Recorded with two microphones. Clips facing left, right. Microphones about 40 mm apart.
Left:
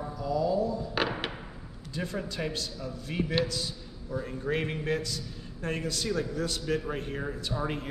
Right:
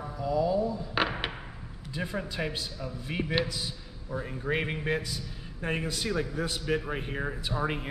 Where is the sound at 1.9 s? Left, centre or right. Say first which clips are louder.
Right 1 dB; centre.